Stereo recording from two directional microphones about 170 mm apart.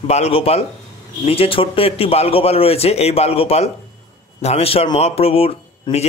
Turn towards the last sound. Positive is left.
turn(degrees=35)  # may be behind; listen again after turning